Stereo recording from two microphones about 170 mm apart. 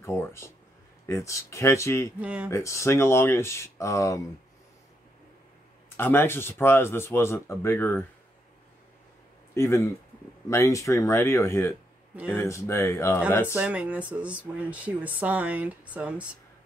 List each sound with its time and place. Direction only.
0.0 s speech: 15° left (ahead or behind)
2.1 s speech: 5° right (ahead or behind)
2.5 s speech: 15° left (ahead or behind)
5.9 s speech: 10° left (ahead or behind)
9.5 s speech: 15° left (ahead or behind)
13.5 s speech: 10° right (ahead or behind)